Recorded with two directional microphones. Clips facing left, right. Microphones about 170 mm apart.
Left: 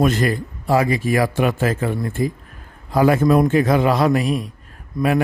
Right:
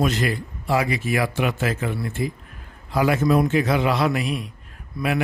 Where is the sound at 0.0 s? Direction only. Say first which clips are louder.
Left 4 dB; 50° left (ahead or behind).